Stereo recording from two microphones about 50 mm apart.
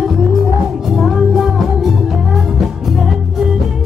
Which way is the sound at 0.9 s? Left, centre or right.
Centre.